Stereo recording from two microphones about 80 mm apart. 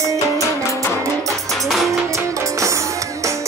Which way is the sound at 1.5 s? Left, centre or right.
Centre.